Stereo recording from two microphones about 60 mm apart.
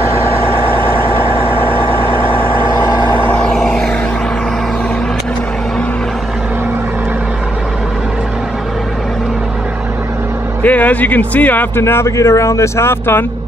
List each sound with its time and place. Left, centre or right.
3.3 s vehicle: centre
10.6 s speech: left
11.8 s speech: left